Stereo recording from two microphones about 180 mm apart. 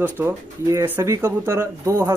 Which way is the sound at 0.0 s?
15° right (ahead or behind).